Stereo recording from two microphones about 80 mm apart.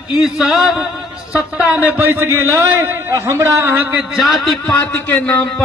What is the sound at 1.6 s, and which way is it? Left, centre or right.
A man's voice, centre.